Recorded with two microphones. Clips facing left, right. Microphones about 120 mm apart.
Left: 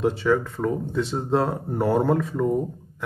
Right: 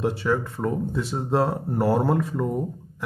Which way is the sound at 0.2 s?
15° right (ahead or behind).